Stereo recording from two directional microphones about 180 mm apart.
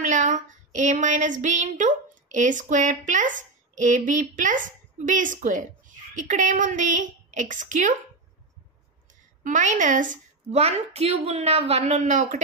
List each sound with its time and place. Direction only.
0.0 s speech: 45° right (ahead or behind)
9.4 s a woman's voice: 45° right (ahead or behind)